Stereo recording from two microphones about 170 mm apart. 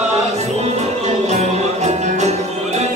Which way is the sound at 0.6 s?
40° right (ahead or behind).